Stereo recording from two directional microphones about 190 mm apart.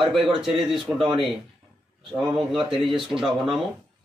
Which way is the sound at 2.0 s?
Centre (ahead or behind).